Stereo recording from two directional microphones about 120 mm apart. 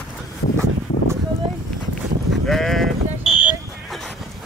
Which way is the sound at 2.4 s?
Centre (ahead or behind).